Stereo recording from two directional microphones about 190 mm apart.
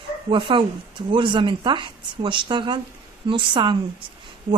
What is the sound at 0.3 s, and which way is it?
Speech, 25° right (ahead or behind).